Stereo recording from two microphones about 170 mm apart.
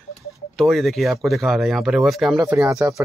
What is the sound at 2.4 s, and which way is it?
Speech, 15° right (ahead or behind).